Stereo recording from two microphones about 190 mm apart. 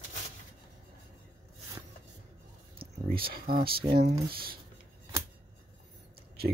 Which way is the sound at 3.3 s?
50° right (ahead or behind).